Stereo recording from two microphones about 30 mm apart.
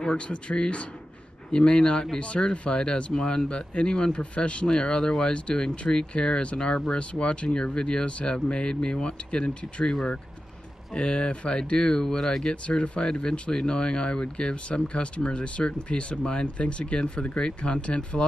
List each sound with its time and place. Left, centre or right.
0.2 s speech: left
5.7 s speech: left
6.1 s speech: left
10.9 s speech: left
12.0 s speech: centre
12.6 s speech: left